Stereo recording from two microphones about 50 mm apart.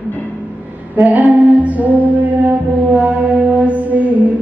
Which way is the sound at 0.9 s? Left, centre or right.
Right.